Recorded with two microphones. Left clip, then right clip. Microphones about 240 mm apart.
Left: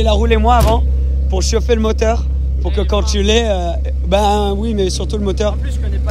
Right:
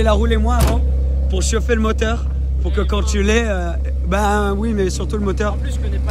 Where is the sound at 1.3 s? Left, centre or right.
Centre.